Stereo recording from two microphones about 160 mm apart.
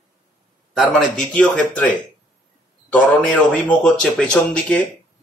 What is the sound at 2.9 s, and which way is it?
Speech, 5° left (ahead or behind).